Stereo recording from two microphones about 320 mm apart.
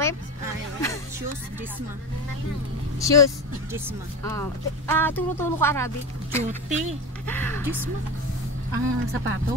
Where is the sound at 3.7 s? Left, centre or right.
Centre.